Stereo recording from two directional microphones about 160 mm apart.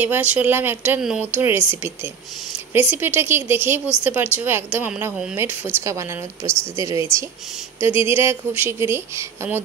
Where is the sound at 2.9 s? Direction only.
15° right (ahead or behind).